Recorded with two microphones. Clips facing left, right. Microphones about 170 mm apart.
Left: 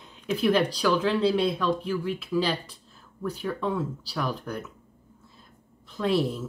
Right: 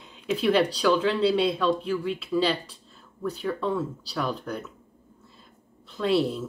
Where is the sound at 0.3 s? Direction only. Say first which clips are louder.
Right 1 dB; 10° left (ahead or behind).